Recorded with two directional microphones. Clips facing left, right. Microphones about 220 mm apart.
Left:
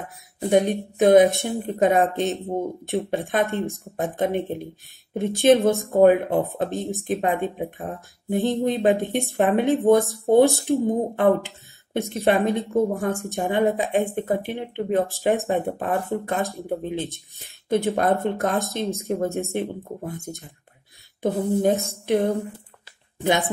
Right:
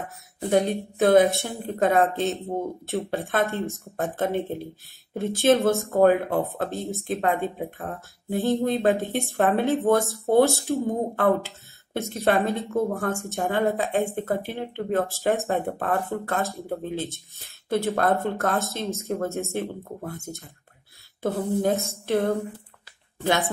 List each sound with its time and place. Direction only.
0.5 s speech: 15° left (ahead or behind)